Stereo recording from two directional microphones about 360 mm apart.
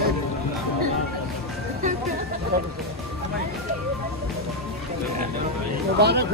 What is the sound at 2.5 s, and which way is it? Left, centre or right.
Music, right.